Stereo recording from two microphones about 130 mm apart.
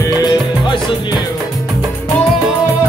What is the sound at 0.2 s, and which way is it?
Music, 35° left (ahead or behind).